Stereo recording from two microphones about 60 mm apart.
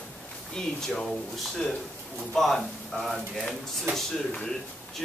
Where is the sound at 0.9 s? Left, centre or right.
Centre.